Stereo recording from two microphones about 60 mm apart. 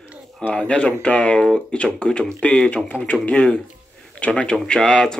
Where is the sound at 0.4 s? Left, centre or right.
Centre.